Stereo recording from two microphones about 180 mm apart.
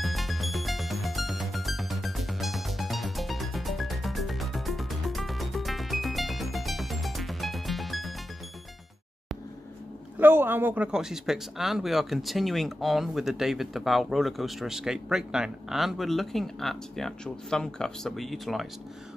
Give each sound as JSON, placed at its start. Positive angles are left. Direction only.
{"t": 0.0, "sound": "music", "side_deg": 0}
{"t": 10.1, "sound": "speech", "side_deg": -10}